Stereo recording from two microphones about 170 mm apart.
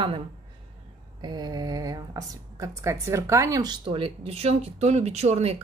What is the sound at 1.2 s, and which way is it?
Speech, 25° right (ahead or behind).